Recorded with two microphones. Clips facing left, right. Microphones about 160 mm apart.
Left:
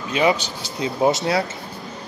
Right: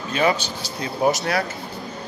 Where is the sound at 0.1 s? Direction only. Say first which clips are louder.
Left 2 dB; 20° left (ahead or behind).